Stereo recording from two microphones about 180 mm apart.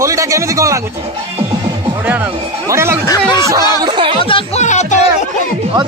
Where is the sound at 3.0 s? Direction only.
20° left (ahead or behind).